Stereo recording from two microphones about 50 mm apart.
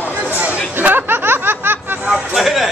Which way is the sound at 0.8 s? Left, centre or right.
Right.